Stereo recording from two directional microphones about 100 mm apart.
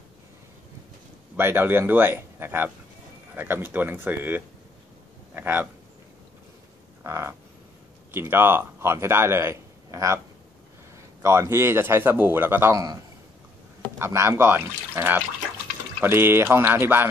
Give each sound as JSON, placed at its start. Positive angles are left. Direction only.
{"t": 1.3, "sound": "a man's voice", "side_deg": -25}
{"t": 7.0, "sound": "a sound", "side_deg": -30}
{"t": 8.1, "sound": "speech", "side_deg": -25}
{"t": 11.2, "sound": "a man's voice", "side_deg": -25}
{"t": 12.7, "sound": "a man's voice", "side_deg": -40}